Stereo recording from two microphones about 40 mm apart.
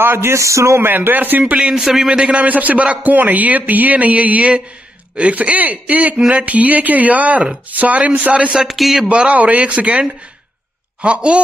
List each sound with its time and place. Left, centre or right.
0.0 s speech: right
1.6 s a man's voice: centre
2.0 s a man's voice: right
2.4 s speech: right
8.6 s speech: centre
9.1 s speech: right